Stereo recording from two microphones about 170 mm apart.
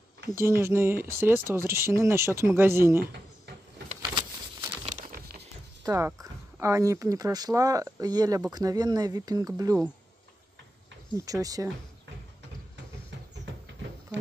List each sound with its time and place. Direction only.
0.3 s speech: 15° right (ahead or behind)
5.9 s speech: 15° right (ahead or behind)
11.1 s speech: 20° right (ahead or behind)